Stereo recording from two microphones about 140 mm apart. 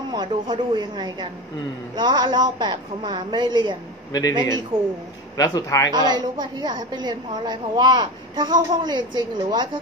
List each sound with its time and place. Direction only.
0.1 s a woman's voice: 30° right (ahead or behind)
4.1 s a man's voice: 25° left (ahead or behind)
5.9 s a woman's voice: 30° right (ahead or behind)